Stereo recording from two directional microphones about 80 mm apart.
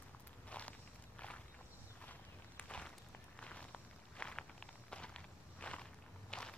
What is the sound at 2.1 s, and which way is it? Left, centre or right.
Walk, centre.